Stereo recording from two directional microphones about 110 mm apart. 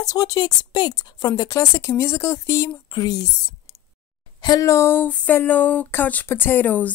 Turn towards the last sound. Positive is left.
turn(degrees=15)  # may be behind; listen again after turning